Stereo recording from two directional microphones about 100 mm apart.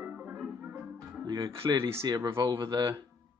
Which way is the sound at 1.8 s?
25° right (ahead or behind).